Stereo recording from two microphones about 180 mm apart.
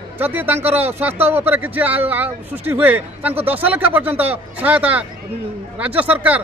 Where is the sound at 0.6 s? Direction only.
35° right (ahead or behind).